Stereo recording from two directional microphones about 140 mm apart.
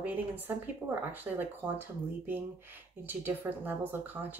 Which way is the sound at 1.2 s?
15° right (ahead or behind).